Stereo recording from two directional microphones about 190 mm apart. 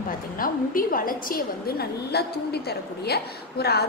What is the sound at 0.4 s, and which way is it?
A woman's voice, 50° left (ahead or behind).